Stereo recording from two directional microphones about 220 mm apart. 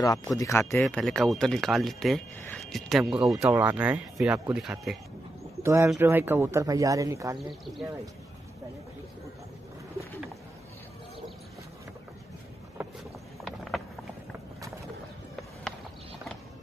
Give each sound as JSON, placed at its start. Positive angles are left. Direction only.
{"t": 0.4, "sound": "speech", "side_deg": 15}
{"t": 7.3, "sound": "speech", "side_deg": 0}
{"t": 12.8, "sound": "a sound", "side_deg": -5}